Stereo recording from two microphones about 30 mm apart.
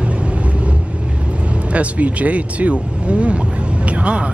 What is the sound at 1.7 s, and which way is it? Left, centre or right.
Speech, right.